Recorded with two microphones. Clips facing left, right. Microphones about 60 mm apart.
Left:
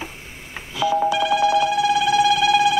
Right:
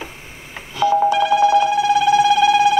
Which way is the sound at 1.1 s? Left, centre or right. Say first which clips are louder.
Right 4 dB; right.